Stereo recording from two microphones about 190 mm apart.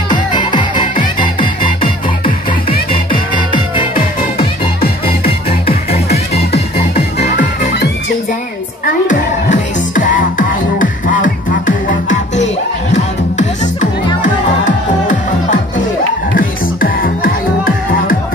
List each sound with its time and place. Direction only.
0.1 s music: 25° left (ahead or behind)
3.1 s music: 25° left (ahead or behind)
5.0 s music: 30° left (ahead or behind)
8.8 s music: 40° left (ahead or behind)
16.3 s music: 50° left (ahead or behind)